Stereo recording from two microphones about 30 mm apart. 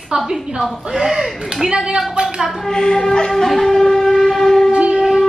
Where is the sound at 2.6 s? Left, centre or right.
Left.